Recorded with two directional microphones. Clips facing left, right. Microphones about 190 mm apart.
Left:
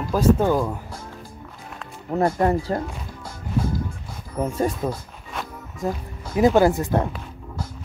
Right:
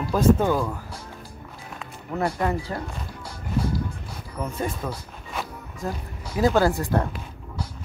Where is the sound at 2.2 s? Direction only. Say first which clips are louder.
Left 5 dB; 45° left (ahead or behind).